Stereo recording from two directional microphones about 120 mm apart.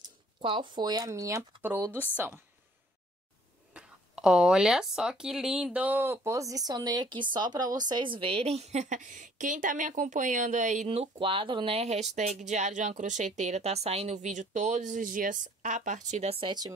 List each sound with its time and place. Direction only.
0.4 s a woman's voice: 45° right (ahead or behind); by 2.4 s 20° right (ahead or behind)
3.7 s speech: 5° right (ahead or behind); by 10.9 s 90° right
10.9 s speech: 50° right (ahead or behind)
16.4 s speech: 35° right (ahead or behind)